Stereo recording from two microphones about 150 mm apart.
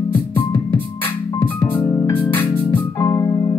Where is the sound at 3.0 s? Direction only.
20° left (ahead or behind).